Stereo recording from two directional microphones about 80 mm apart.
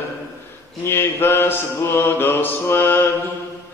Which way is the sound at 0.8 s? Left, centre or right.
Left.